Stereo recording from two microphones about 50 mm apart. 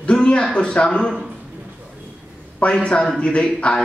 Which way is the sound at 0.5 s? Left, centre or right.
Centre.